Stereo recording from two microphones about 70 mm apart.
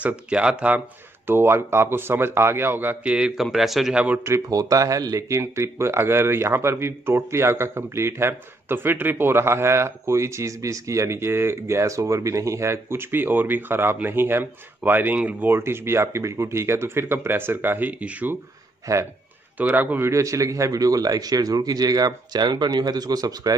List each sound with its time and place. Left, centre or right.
0.0 s speech: centre
1.2 s a man's voice: right
3.1 s speech: centre
3.9 s speech: centre
4.5 s speech: right
5.4 s a man's voice: right
15.5 s a man's voice: right
18.9 s speech: right
19.6 s speech: right
20.1 s speech: right